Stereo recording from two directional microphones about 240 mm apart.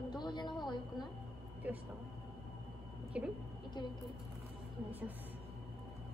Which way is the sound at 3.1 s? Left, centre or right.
Centre.